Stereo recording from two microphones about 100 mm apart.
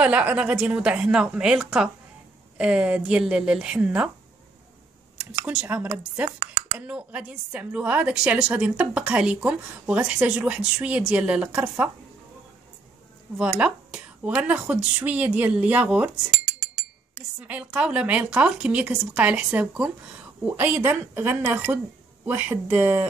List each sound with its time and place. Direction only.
0.0 s a woman's voice: 15° right (ahead or behind)
5.5 s a woman's voice: 10° right (ahead or behind)
6.9 s a woman's voice: 15° right (ahead or behind)
13.6 s a woman's voice: 10° right (ahead or behind)
17.4 s a woman's voice: 10° right (ahead or behind)